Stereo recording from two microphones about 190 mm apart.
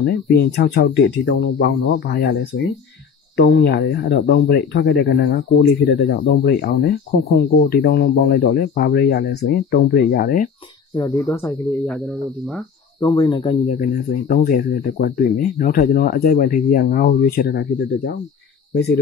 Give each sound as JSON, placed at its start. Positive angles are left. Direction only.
{"t": 0.0, "sound": "speech", "side_deg": 55}
{"t": 11.0, "sound": "speech", "side_deg": 15}
{"t": 13.0, "sound": "speech", "side_deg": 20}
{"t": 13.7, "sound": "speech", "side_deg": 50}